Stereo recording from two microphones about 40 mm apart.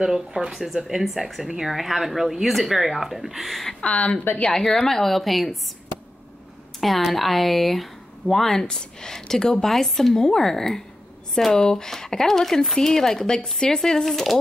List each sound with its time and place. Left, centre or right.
0.0 s speech: centre
3.8 s a woman's voice: left
4.5 s speech: centre
7.1 s speech: centre
8.6 s speech: centre